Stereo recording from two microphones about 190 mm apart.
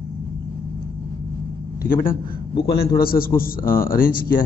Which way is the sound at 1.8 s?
45° left (ahead or behind).